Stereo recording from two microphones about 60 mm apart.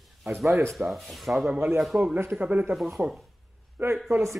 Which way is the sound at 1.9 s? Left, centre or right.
Right.